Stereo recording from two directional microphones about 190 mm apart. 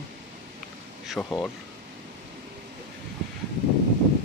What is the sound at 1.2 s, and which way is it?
Speech, 10° left (ahead or behind).